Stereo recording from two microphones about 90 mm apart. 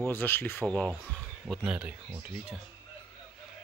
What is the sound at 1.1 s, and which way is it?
Speech, 5° left (ahead or behind).